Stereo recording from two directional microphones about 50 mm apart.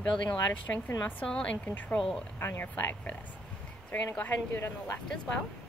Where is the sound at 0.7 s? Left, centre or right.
Left.